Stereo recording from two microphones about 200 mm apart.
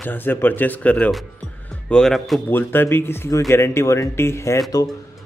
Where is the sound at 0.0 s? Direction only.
10° left (ahead or behind).